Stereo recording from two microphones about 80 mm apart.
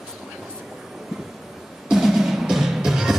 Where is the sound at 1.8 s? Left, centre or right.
Centre.